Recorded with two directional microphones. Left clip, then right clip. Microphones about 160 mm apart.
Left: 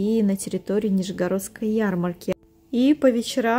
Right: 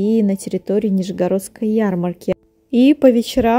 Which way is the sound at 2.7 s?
35° right (ahead or behind).